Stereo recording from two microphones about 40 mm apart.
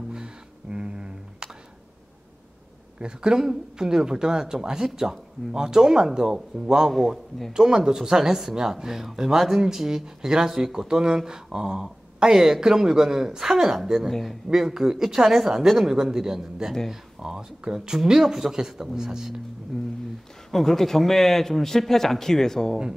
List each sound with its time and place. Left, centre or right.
0.1 s a sound: centre
3.0 s speech: right
6.9 s a man's voice: centre
7.5 s speech: centre
19.7 s speech: centre